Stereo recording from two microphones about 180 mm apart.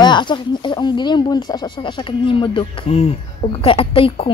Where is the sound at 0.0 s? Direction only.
25° left (ahead or behind).